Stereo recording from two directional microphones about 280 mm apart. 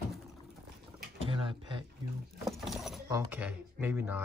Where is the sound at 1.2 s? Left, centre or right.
Centre.